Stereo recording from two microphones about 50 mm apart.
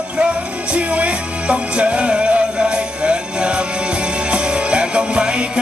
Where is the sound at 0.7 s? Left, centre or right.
Right.